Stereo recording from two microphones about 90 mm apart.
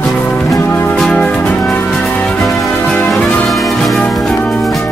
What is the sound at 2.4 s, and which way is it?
Music, centre (ahead or behind).